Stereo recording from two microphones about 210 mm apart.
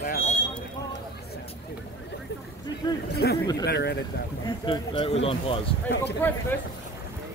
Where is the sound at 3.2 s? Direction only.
50° left (ahead or behind).